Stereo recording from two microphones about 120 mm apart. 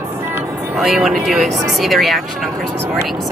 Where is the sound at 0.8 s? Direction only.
5° right (ahead or behind).